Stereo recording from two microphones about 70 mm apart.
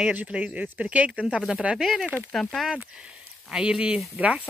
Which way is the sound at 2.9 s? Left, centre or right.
Centre.